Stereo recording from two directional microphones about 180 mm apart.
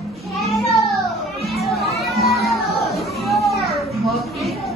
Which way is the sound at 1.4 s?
Centre (ahead or behind).